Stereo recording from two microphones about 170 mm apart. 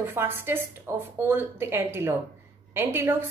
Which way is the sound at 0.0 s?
15° right (ahead or behind).